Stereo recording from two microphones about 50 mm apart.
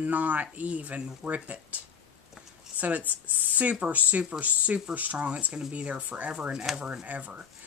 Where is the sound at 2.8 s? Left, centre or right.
Right.